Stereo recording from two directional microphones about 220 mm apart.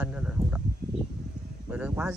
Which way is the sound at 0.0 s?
5° right (ahead or behind).